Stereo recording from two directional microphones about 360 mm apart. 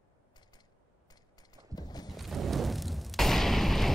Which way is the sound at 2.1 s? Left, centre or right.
Centre.